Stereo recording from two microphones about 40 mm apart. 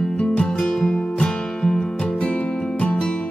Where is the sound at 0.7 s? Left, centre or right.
Centre.